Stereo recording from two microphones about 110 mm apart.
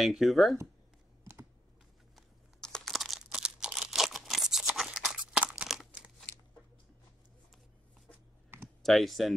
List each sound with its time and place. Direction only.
0.0 s speech: centre (ahead or behind)
2.1 s crunch: 5° left (ahead or behind)
8.5 s clicking: 20° right (ahead or behind)
8.8 s speech: centre (ahead or behind)